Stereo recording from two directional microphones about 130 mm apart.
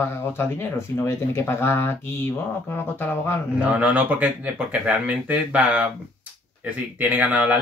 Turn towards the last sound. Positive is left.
turn(degrees=-10)  # may be behind; listen again after turning